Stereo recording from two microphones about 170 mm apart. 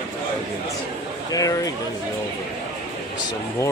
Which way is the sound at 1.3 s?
20° left (ahead or behind).